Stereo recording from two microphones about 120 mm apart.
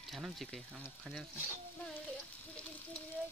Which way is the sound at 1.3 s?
20° left (ahead or behind).